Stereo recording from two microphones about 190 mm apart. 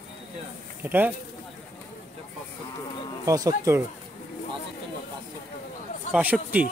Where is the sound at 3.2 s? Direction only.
20° right (ahead or behind).